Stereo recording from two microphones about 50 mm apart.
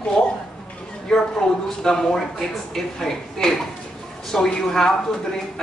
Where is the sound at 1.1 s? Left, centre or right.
Centre.